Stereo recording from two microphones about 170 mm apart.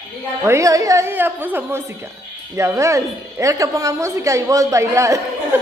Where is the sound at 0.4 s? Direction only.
15° right (ahead or behind).